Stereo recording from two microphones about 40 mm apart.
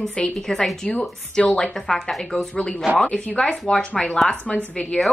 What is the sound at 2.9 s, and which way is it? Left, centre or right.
Speech, right.